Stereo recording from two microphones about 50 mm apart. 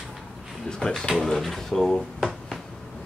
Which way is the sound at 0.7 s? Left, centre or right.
Centre.